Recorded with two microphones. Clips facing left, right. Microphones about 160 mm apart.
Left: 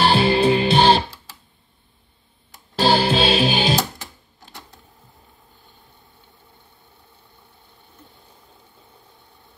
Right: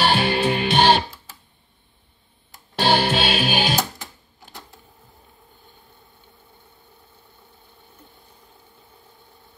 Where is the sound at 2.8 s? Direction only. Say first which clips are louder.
Left 2 dB; 30° left (ahead or behind).